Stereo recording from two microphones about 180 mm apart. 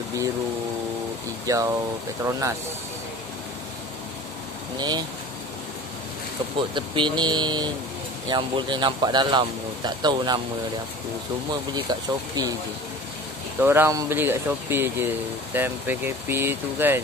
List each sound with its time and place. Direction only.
1.4 s speech: 20° right (ahead or behind)
4.7 s speech: 25° right (ahead or behind)
6.7 s speech: 25° right (ahead or behind)
11.7 s speech: 20° right (ahead or behind)
13.6 s speech: 10° right (ahead or behind)